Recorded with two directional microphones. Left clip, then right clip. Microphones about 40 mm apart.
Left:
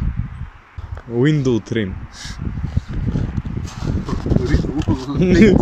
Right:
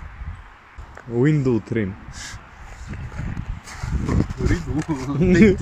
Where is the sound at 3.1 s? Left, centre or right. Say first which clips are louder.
Left 7 dB; left.